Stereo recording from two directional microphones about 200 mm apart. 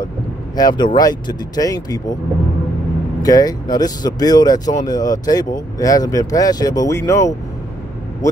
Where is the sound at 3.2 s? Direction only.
20° left (ahead or behind).